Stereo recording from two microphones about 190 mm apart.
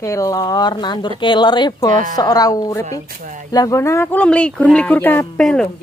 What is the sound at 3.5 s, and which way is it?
Speech, 20° left (ahead or behind).